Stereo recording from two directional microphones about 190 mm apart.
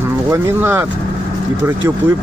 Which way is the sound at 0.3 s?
15° right (ahead or behind).